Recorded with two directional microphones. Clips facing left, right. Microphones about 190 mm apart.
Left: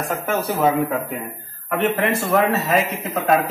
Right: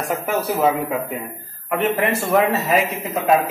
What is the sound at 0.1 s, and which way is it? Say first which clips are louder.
Speech: right 2 dB; 10° right (ahead or behind).